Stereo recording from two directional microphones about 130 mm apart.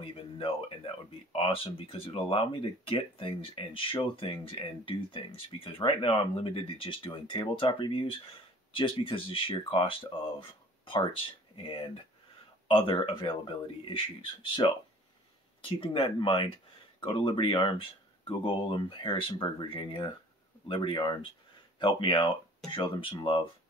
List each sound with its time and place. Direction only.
0.0 s speech: 45° left (ahead or behind)
12.6 s speech: 40° left (ahead or behind)